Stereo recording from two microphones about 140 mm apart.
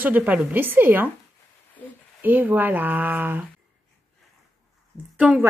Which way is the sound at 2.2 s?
10° right (ahead or behind).